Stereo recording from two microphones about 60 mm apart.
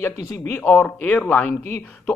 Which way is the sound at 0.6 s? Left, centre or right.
Centre.